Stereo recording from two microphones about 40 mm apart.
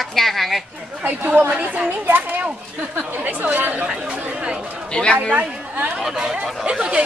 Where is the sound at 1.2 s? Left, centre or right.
Right.